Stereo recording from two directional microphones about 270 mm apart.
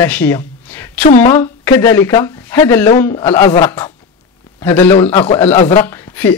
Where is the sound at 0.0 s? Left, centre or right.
Centre.